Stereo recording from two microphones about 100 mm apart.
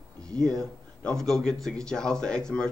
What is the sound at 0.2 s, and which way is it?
A man's voice, 5° left (ahead or behind).